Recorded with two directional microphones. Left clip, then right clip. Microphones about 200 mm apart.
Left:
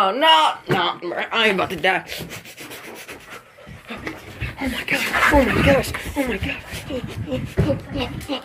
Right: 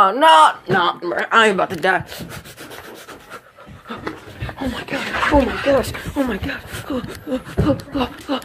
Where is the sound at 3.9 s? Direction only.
15° right (ahead or behind).